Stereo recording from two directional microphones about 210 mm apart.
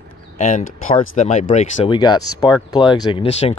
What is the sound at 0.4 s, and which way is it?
Speech, 35° left (ahead or behind).